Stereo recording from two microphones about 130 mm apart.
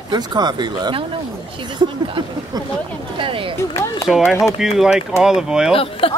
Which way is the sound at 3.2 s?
40° right (ahead or behind).